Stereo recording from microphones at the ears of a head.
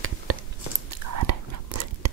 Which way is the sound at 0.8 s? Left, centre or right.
Right.